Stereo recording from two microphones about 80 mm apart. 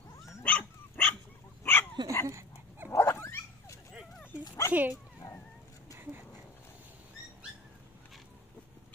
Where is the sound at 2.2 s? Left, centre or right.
Right.